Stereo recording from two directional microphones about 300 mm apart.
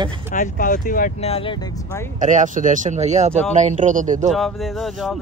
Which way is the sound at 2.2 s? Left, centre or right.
Right.